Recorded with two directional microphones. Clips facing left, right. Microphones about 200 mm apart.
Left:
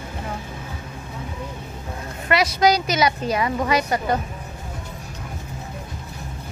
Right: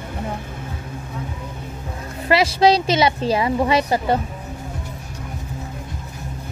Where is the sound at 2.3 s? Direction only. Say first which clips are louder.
Right 3 dB; 30° right (ahead or behind).